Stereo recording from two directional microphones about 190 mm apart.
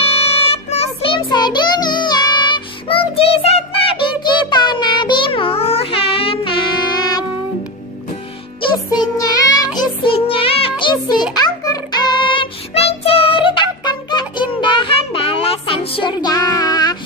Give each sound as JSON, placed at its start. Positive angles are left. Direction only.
{"t": 0.0, "sound": "child singing", "side_deg": 30}
{"t": 8.5, "sound": "music", "side_deg": 25}